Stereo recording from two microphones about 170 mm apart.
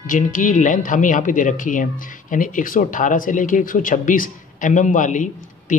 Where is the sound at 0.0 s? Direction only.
50° left (ahead or behind).